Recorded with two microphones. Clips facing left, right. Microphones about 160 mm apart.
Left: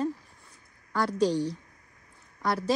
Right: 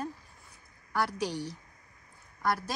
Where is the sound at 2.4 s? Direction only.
Centre (ahead or behind).